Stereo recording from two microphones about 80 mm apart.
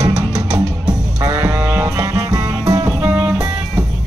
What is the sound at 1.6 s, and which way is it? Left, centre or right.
Music, centre.